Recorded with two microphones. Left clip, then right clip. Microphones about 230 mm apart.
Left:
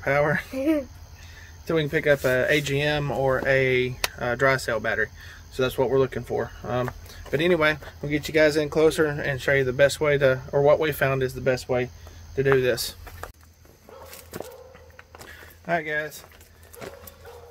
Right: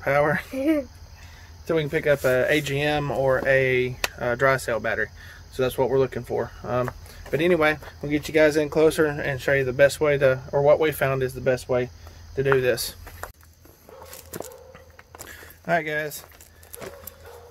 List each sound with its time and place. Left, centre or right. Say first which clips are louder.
0.0 s speech: right 1 dB; centre
14.3 s dog: right 1 dB; right
15.1 s a sound: right 2 dB; right